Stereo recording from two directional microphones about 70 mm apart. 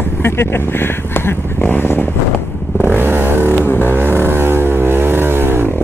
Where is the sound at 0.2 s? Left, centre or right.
Left.